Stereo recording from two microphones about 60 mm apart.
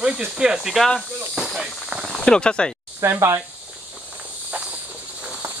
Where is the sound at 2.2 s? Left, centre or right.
Centre.